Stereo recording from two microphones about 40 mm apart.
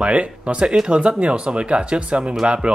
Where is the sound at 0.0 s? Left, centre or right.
Right.